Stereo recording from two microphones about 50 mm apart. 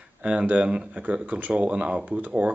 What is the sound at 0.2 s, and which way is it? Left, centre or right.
Speech, right.